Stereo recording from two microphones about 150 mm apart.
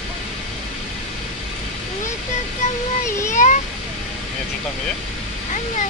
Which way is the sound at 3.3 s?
55° left (ahead or behind).